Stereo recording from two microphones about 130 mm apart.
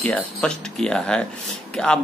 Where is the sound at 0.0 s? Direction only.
10° left (ahead or behind).